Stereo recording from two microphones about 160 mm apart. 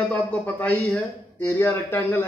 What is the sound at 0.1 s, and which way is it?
A man's voice, 10° left (ahead or behind).